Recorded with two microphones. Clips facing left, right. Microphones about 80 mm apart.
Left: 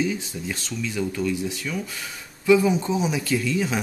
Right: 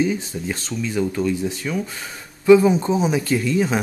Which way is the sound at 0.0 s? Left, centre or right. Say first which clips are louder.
Right 4 dB; right.